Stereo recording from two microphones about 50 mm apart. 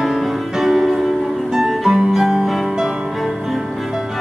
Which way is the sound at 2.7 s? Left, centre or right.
Centre.